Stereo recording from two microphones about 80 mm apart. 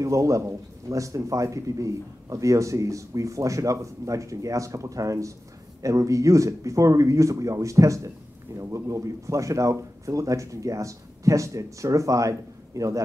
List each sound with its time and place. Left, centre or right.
0.0 s a man's voice: right